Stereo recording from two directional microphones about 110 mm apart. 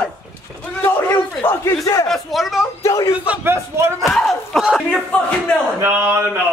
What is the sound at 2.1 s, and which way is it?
Speech, centre (ahead or behind).